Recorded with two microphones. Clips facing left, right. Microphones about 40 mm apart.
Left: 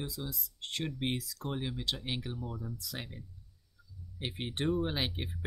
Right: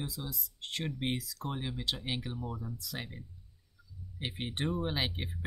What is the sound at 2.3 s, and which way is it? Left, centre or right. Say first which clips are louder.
Speech: right 1 dB; right.